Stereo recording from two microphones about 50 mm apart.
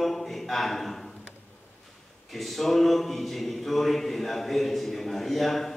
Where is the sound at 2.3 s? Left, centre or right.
Centre.